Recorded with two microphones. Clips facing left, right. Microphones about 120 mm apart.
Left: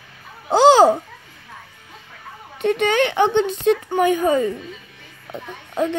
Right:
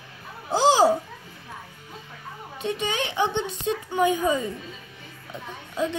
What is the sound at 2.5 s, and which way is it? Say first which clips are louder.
Speech: left 10 dB; 60° left (ahead or behind).